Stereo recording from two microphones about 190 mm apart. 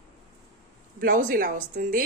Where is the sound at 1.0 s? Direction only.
50° right (ahead or behind).